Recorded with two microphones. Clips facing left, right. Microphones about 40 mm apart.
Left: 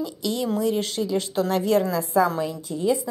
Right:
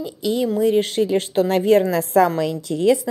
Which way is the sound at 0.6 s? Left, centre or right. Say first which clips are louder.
Right 6 dB; right.